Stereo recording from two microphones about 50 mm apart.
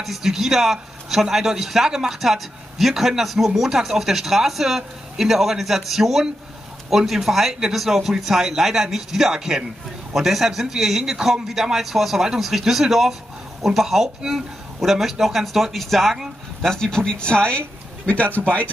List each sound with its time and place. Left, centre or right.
0.0 s a man's voice: centre
16.6 s speech: centre; by 18.7 s left